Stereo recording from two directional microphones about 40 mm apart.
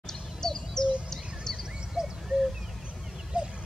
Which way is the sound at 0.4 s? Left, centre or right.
Centre.